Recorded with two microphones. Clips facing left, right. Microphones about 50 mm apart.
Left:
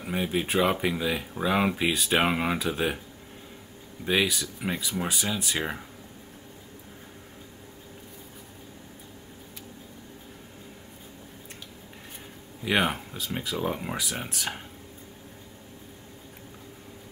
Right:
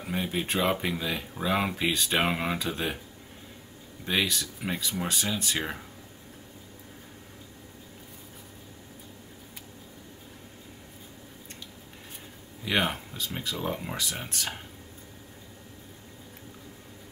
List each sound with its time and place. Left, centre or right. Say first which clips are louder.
0.0 s speech: left 2 dB; centre
4.0 s speech: left 3 dB; centre
12.6 s speech: left 2 dB; centre